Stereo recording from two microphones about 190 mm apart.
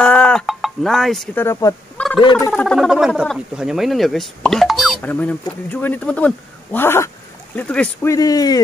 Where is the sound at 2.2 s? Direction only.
25° left (ahead or behind).